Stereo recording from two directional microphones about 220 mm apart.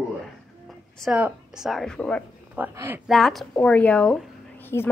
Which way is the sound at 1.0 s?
5° right (ahead or behind).